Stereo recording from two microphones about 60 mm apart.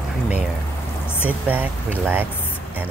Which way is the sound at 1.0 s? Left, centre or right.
Left.